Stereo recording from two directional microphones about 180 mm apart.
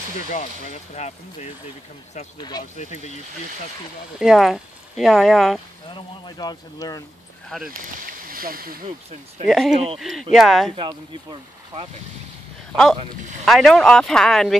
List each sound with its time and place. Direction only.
0.3 s speech: 40° left (ahead or behind)
2.3 s speech: 20° left (ahead or behind)
2.8 s speech: 40° left (ahead or behind)
4.2 s speech: centre (ahead or behind)
5.9 s speech: 25° left (ahead or behind)
7.8 s speech: 50° right (ahead or behind)
9.5 s speech: centre (ahead or behind)
10.8 s speech: 25° right (ahead or behind)
13.5 s speech: centre (ahead or behind)